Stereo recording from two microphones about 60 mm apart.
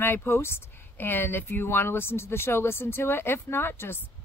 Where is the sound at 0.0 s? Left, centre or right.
Left.